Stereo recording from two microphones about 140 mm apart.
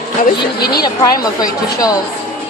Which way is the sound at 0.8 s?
25° left (ahead or behind).